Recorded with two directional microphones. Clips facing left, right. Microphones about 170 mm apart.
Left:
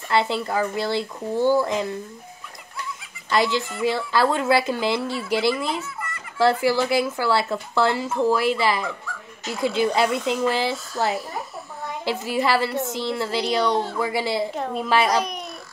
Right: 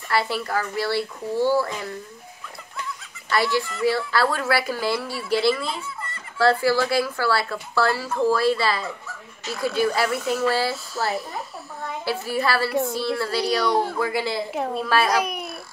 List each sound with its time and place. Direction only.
0.1 s speech: 20° left (ahead or behind)
3.3 s speech: 20° left (ahead or behind)
15.1 s babbling: 10° right (ahead or behind)